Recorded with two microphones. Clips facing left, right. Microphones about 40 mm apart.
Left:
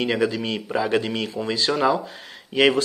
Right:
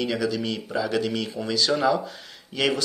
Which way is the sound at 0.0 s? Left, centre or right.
Left.